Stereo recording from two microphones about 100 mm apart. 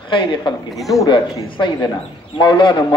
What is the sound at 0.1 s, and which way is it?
A man's voice, 55° left (ahead or behind).